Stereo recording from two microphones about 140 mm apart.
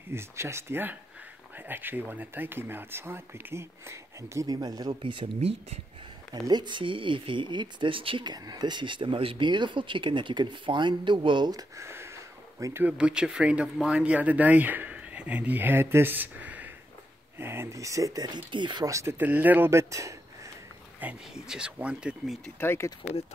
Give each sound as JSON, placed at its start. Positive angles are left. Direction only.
{"t": 0.1, "sound": "speech", "side_deg": -20}
{"t": 6.4, "sound": "speech", "side_deg": -30}
{"t": 12.8, "sound": "speech", "side_deg": -5}
{"t": 21.0, "sound": "speech", "side_deg": -5}
{"t": 22.6, "sound": "speech", "side_deg": 20}